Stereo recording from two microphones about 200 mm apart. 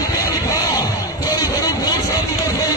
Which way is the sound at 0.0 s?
15° left (ahead or behind).